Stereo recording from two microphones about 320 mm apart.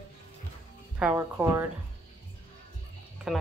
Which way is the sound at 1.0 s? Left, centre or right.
Centre.